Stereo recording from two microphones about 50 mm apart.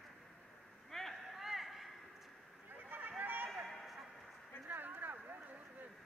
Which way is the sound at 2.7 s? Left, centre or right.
Right.